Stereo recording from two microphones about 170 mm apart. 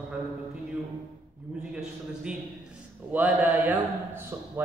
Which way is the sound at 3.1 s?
10° right (ahead or behind).